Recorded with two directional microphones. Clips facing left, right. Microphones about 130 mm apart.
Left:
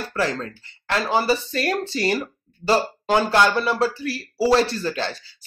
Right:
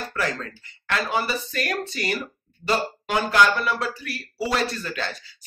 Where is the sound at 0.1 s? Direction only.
30° left (ahead or behind).